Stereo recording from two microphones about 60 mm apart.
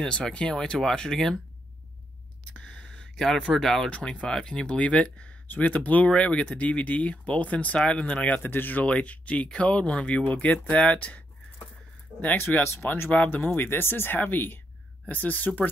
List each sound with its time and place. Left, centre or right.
0.0 s speech: centre
2.5 s gasp: centre
3.2 s speech: centre
3.9 s speech: centre
8.4 s speech: left
12.6 s speech: left
13.1 s speech: left